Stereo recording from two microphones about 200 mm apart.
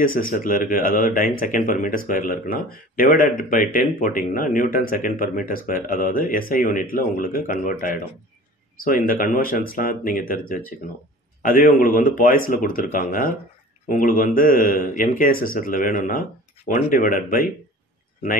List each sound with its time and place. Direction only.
0.0 s speech: 45° left (ahead or behind)